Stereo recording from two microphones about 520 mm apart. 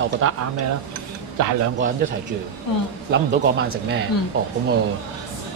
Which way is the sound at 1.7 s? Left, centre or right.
Centre.